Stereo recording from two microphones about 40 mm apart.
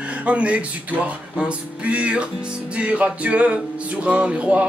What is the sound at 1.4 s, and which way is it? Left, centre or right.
Speech, right.